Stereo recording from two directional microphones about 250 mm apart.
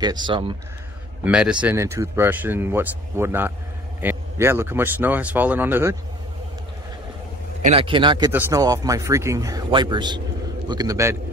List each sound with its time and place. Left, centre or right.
0.0 s a man's voice: centre
1.2 s speech: centre
7.6 s a man's voice: right